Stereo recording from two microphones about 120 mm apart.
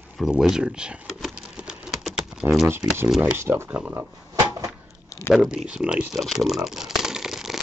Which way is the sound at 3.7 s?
10° right (ahead or behind).